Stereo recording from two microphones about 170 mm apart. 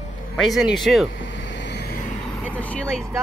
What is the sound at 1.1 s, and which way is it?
Vehicle, 90° left.